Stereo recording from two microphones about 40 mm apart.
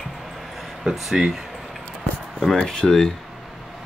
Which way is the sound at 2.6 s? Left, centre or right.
Centre.